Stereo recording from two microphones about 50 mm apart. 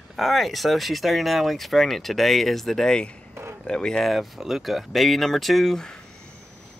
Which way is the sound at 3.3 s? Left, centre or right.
Right.